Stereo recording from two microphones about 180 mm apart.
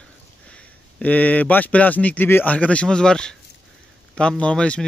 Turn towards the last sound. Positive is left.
turn(degrees=5)  # may be behind; listen again after turning